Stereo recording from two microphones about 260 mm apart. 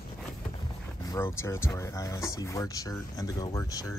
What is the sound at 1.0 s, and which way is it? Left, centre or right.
Speech, centre.